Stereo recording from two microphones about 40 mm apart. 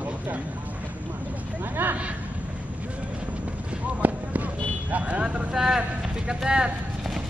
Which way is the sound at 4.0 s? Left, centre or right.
Right.